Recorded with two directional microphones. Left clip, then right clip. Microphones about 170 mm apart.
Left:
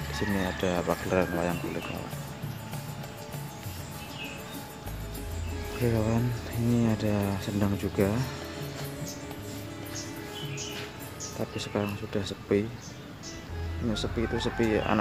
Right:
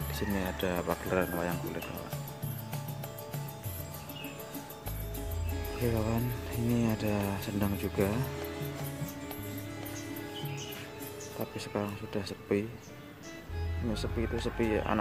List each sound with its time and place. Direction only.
0.1 s speech: 15° right (ahead or behind)
5.8 s speech: centre (ahead or behind)
6.8 s speech: 15° right (ahead or behind)
11.5 s speech: 10° right (ahead or behind)
13.9 s speech: 10° right (ahead or behind)